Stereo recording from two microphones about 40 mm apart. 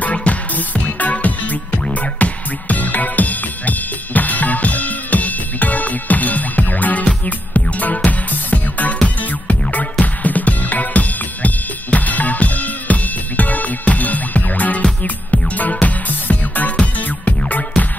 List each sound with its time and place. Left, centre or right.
0.0 s music: left
16.7 s music: left